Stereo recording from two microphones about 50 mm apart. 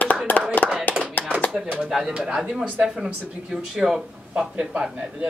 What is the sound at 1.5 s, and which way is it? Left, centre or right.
Speech, centre.